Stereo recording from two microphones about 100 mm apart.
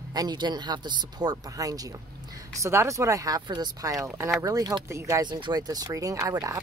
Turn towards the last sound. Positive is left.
turn(degrees=-35)  # may be behind; listen again after turning